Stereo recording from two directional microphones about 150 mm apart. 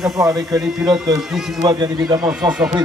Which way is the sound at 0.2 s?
20° right (ahead or behind).